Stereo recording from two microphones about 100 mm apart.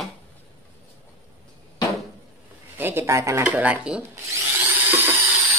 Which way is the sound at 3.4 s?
15° right (ahead or behind).